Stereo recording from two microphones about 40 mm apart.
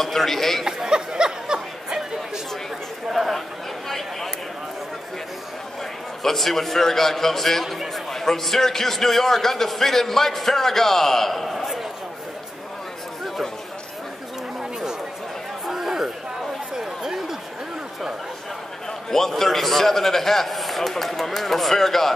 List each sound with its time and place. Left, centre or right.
0.0 s a man's voice: centre
0.7 s chatter: centre
3.1 s chatter: centre
6.2 s a man's voice: centre
14.6 s chatter: centre
15.6 s a sound: centre
19.0 s a man's voice: centre